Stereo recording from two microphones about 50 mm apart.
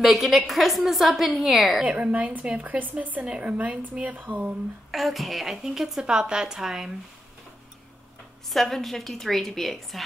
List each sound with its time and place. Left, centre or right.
0.0 s a woman's voice: centre
1.8 s a woman's voice: right
4.9 s a woman's voice: centre
8.5 s a woman's voice: centre